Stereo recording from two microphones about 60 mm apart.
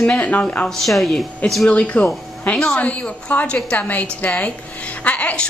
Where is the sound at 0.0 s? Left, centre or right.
Centre.